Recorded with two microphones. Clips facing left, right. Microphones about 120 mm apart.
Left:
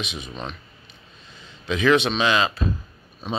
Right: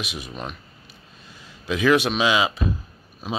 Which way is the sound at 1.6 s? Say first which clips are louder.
Even; 5° right (ahead or behind).